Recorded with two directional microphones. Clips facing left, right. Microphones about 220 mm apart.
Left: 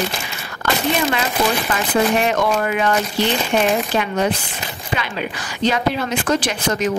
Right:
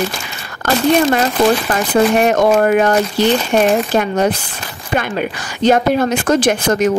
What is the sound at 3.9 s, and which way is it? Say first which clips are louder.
Speech: right 4 dB; 45° right (ahead or behind).